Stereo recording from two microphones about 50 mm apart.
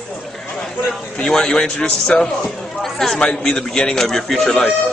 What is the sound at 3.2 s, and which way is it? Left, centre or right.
A man's voice, centre.